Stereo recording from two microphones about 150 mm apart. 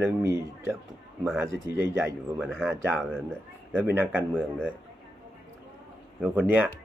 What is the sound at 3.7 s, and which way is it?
Speech, 10° right (ahead or behind).